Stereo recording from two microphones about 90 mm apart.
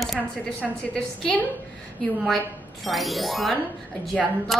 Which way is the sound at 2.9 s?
Centre (ahead or behind).